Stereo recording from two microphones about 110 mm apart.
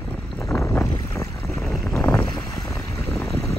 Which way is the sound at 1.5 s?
Centre (ahead or behind).